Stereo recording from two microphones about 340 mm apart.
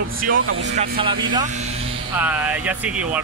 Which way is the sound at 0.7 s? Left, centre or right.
Centre.